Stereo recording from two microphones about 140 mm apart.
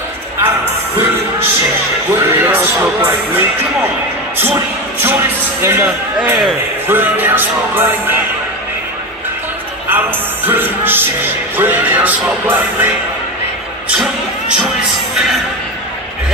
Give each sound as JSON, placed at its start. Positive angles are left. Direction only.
{"t": 0.4, "sound": "music", "side_deg": -15}
{"t": 2.1, "sound": "speech", "side_deg": -15}
{"t": 5.6, "sound": "speech", "side_deg": -15}
{"t": 9.8, "sound": "speech", "side_deg": -15}